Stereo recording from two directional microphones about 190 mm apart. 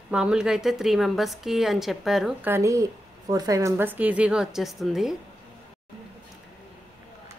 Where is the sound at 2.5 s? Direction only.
15° right (ahead or behind).